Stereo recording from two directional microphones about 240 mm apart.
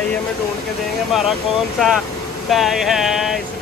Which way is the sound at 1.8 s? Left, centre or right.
Centre.